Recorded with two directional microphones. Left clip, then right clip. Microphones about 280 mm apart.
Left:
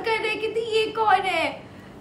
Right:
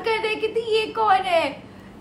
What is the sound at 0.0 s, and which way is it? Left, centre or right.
A woman's voice, centre.